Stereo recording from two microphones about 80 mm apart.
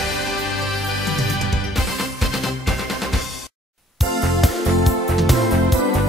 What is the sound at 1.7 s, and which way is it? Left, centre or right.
Music, centre.